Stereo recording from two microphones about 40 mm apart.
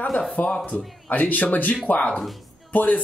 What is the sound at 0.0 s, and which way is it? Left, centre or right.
A man's voice, left.